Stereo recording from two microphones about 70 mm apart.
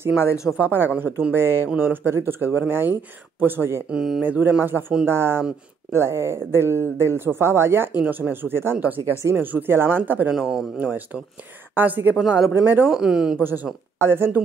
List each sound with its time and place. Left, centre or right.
0.2 s speech: left
0.6 s speech: right
3.9 s speech: centre
4.2 s speech: right
10.3 s speech: centre
11.7 s speech: right
12.2 s speech: centre
12.6 s speech: right
12.9 s speech: centre
13.9 s speech: right